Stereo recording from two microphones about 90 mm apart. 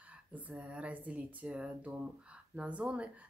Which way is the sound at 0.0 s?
15° right (ahead or behind).